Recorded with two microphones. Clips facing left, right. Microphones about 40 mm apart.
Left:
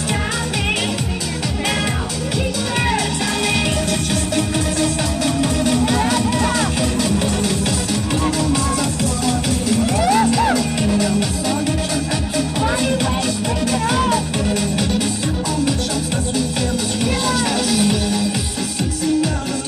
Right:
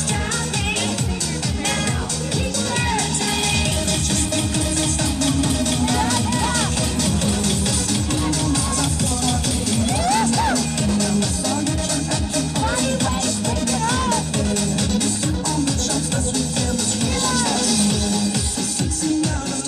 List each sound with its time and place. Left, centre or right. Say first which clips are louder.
10.0 s music: left 4 dB; centre
12.6 s music: left 3 dB; left
17.3 s music: left 2 dB; centre